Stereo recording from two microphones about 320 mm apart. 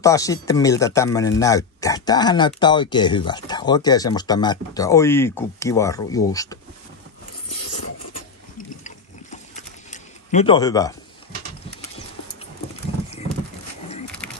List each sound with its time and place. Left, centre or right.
0.0 s speech: centre
8.5 s horse: left
10.3 s speech: centre